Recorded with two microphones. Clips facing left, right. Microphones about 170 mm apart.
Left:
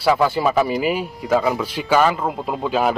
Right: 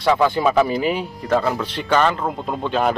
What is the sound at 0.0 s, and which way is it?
Speech, 5° left (ahead or behind).